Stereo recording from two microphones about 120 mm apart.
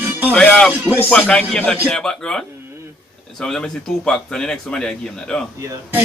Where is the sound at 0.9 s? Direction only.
10° left (ahead or behind).